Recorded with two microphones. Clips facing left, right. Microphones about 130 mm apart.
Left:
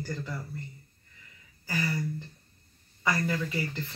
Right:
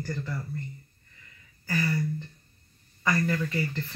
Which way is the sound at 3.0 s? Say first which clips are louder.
Right 2 dB; 10° left (ahead or behind).